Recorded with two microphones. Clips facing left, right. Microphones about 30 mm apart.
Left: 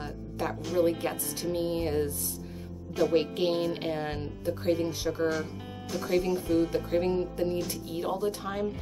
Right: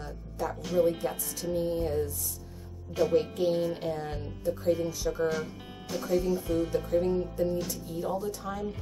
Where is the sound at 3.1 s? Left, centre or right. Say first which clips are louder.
Right 1 dB; left.